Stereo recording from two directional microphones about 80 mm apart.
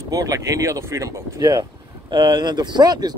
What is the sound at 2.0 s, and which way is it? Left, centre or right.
Speech, right.